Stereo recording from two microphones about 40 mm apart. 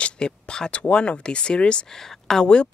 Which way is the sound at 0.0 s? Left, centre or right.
Left.